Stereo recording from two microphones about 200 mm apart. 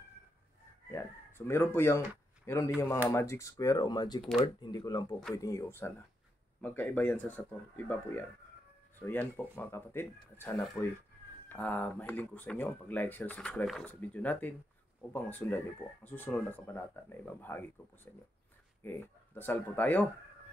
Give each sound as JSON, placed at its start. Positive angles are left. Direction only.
{"t": 0.9, "sound": "speech", "side_deg": 15}